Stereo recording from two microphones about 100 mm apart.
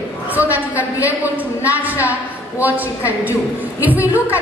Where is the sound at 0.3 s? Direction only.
15° right (ahead or behind).